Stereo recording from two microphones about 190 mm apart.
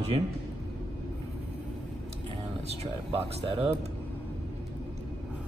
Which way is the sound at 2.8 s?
30° right (ahead or behind).